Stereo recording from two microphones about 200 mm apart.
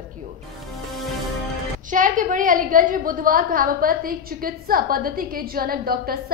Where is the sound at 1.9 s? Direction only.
40° right (ahead or behind).